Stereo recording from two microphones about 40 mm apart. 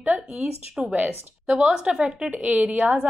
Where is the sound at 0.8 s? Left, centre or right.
Right.